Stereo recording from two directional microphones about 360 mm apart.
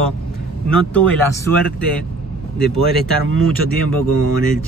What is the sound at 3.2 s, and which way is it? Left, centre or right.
Speech, right.